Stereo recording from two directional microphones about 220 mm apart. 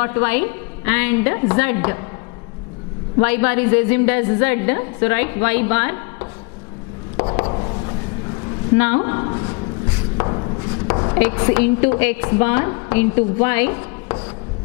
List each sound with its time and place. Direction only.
0.0 s a woman's voice: 10° left (ahead or behind)
3.2 s a woman's voice: 10° left (ahead or behind)
7.2 s a sound: 25° left (ahead or behind)
8.7 s a woman's voice: 10° left (ahead or behind)
10.1 s chopping: 25° left (ahead or behind)
10.9 s a sound: 25° left (ahead or behind)
11.1 s a woman's voice: 10° left (ahead or behind)